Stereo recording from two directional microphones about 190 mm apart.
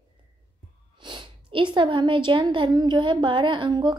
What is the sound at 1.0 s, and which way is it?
A woman's voice, 25° right (ahead or behind).